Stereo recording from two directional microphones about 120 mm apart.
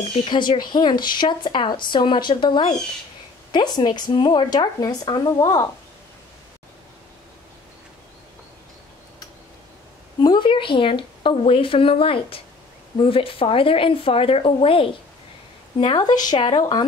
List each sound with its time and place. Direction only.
0.1 s speech: 45° left (ahead or behind)
10.2 s a woman's voice: 40° left (ahead or behind)
16.0 s speech: 35° left (ahead or behind)